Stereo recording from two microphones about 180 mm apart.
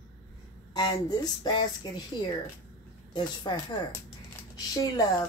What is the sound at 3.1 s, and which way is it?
Speech, 25° left (ahead or behind).